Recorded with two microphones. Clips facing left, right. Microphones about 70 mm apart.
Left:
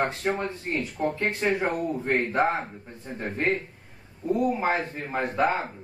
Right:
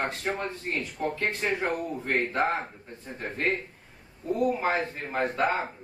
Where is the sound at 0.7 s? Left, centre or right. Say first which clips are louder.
Left 3 dB; left.